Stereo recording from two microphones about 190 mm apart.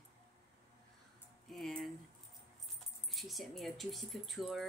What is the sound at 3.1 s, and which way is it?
Speech, centre (ahead or behind).